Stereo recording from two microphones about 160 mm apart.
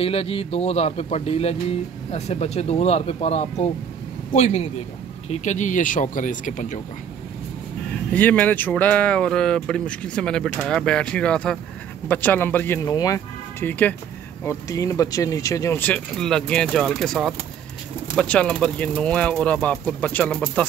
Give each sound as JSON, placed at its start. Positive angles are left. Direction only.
{"t": 0.0, "sound": "a man's voice", "side_deg": 35}
{"t": 8.1, "sound": "speech", "side_deg": 10}